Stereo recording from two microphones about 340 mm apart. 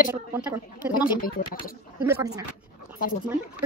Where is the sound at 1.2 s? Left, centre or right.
Left.